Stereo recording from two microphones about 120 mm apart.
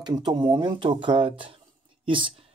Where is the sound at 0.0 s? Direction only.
35° right (ahead or behind).